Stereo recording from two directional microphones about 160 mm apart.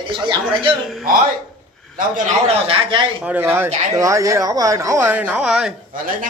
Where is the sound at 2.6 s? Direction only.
35° right (ahead or behind).